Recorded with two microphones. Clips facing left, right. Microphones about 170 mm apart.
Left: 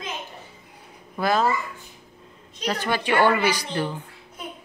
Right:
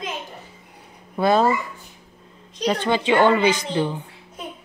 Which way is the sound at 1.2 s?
30° right (ahead or behind).